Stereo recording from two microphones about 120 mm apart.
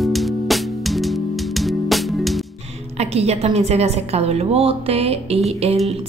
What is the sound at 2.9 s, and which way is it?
A woman's voice, 60° right (ahead or behind).